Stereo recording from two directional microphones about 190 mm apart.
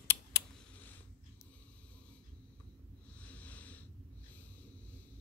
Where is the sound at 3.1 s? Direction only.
5° left (ahead or behind).